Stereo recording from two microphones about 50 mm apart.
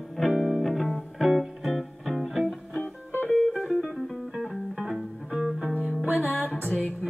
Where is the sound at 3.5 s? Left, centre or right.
Centre.